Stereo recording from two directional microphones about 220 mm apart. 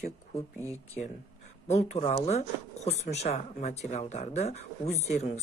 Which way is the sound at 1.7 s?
30° left (ahead or behind).